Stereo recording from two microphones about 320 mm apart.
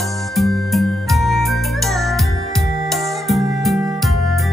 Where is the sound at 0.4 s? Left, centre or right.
Centre.